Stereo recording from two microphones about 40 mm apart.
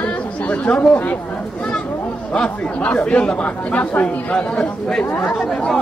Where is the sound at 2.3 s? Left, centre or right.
Left.